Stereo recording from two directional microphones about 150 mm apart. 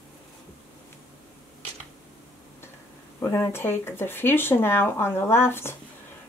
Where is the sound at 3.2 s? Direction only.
20° left (ahead or behind).